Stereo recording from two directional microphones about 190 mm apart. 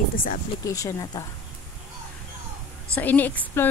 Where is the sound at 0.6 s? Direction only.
15° left (ahead or behind).